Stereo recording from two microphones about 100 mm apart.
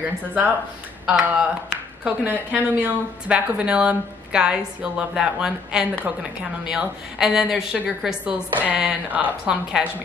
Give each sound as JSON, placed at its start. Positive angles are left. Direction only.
{"t": 0.2, "sound": "a woman's voice", "side_deg": -15}